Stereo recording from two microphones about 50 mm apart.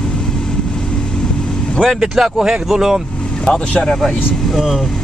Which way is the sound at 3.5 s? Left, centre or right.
Centre.